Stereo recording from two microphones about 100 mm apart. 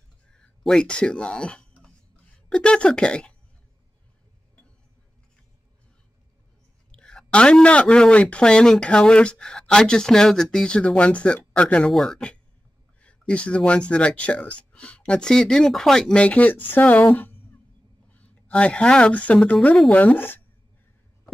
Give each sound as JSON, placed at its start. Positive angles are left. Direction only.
{"t": 0.3, "sound": "a sound", "side_deg": 5}
{"t": 2.5, "sound": "speech", "side_deg": 10}
{"t": 6.9, "sound": "speech", "side_deg": 10}